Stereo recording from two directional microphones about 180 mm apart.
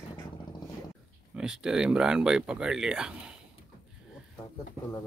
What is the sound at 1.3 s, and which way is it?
Speech, 5° right (ahead or behind).